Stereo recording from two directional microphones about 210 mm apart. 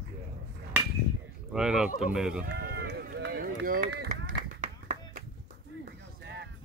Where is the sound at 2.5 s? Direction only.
50° right (ahead or behind).